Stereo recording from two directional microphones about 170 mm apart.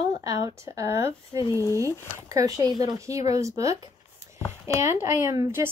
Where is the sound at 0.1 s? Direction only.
20° right (ahead or behind).